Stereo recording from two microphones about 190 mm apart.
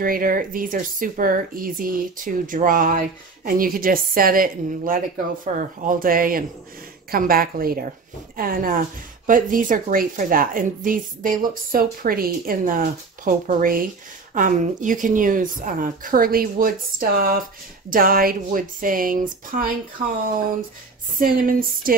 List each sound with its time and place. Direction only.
0.0 s speech: 50° right (ahead or behind)
21.2 s speech: 45° right (ahead or behind)